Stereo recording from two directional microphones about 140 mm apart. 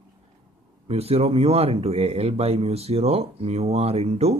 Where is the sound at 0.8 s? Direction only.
45° right (ahead or behind).